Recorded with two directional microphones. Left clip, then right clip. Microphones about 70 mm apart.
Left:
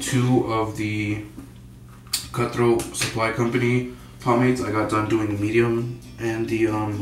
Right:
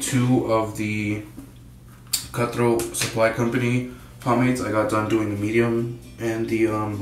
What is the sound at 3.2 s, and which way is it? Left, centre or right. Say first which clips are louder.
Speech: right 2 dB; right.